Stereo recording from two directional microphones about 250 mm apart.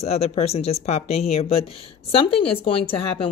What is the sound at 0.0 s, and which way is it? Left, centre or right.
Speech, left.